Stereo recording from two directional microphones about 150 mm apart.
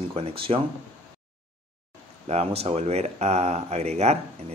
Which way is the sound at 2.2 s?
45° right (ahead or behind).